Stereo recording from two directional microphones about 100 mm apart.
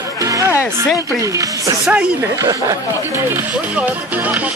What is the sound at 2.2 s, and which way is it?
Speech, 30° right (ahead or behind).